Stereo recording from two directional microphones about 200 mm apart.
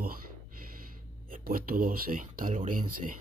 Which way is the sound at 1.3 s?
45° right (ahead or behind).